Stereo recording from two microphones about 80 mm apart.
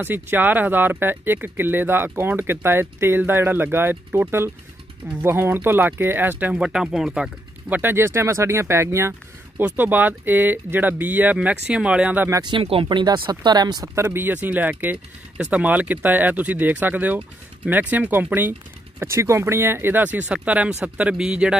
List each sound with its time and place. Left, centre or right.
0.0 s speech: right; by 7.2 s centre
7.7 s speech: right
9.6 s speech: right
12.4 s speech: right
13.9 s speech: right
18.9 s speech: right; by 21.5 s centre